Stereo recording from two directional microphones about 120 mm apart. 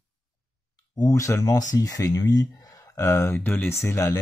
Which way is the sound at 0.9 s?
25° left (ahead or behind).